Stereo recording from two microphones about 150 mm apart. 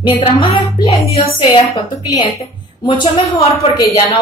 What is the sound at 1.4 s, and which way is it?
Speech, 25° left (ahead or behind).